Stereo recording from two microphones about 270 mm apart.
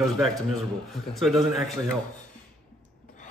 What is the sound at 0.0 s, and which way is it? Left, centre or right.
A man's voice, centre.